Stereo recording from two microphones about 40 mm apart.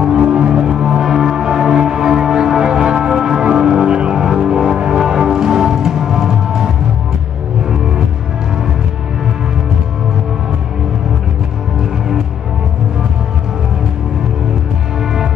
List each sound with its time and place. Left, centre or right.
0.0 s music: centre